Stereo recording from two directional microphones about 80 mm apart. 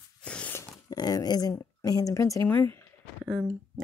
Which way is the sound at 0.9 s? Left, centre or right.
Left.